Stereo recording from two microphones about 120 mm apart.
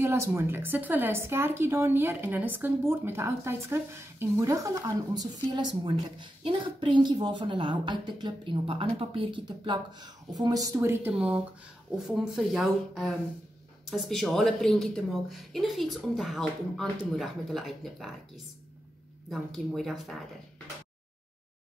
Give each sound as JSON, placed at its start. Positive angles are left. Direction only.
{"t": 0.0, "sound": "a woman's voice", "side_deg": -20}
{"t": 10.8, "sound": "a woman's voice", "side_deg": -20}